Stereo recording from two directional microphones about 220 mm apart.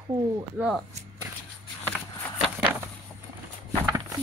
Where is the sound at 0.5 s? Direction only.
5° right (ahead or behind).